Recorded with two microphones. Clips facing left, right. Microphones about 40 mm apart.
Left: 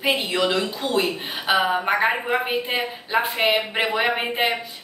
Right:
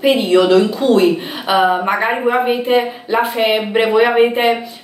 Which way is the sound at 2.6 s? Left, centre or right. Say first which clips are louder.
Right 11 dB; centre.